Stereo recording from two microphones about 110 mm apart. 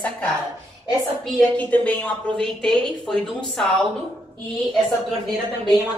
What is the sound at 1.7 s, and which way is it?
Speech, 10° left (ahead or behind).